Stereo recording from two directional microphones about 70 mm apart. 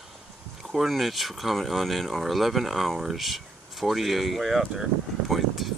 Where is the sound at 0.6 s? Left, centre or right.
Centre.